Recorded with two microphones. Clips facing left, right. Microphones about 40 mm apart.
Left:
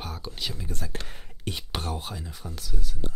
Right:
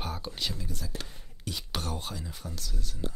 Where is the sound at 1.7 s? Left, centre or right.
Centre.